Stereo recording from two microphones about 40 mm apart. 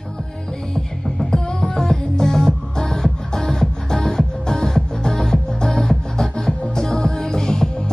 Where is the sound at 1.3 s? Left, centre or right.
Centre.